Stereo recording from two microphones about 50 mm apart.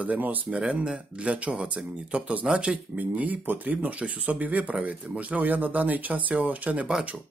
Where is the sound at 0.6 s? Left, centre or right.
Right.